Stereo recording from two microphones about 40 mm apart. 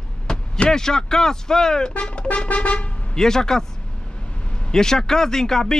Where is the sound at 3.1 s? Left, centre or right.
Centre.